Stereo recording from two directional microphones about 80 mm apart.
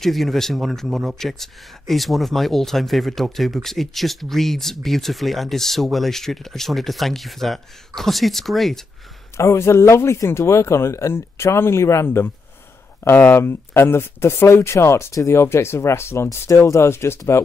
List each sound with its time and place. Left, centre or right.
0.0 s speech: centre
9.4 s speech: left